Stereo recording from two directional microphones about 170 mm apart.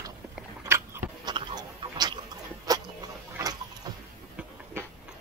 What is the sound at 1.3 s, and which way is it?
Rodents, 30° right (ahead or behind).